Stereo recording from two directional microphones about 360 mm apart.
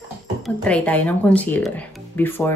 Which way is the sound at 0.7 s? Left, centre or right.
Centre.